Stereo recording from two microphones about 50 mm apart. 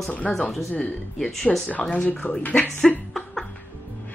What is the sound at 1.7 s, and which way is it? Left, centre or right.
Speech, left.